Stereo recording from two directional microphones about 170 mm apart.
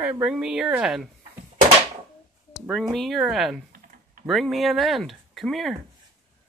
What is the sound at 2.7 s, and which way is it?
Speech, centre (ahead or behind).